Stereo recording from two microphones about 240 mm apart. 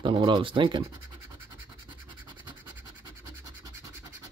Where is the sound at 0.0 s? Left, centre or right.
Centre.